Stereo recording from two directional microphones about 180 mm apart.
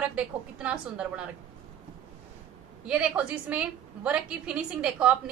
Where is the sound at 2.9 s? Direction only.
5° right (ahead or behind).